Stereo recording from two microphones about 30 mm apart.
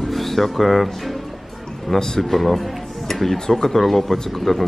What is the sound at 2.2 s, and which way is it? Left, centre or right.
Speech, centre.